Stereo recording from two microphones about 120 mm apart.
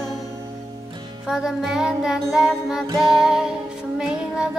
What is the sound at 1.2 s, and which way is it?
Music, 5° right (ahead or behind).